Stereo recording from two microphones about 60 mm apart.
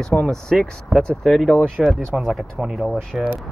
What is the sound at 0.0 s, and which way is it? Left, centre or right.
Speech, centre.